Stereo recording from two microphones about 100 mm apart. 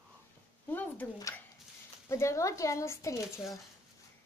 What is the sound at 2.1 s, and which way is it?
Speech, 30° left (ahead or behind).